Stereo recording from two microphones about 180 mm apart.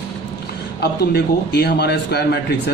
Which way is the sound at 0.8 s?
65° left (ahead or behind).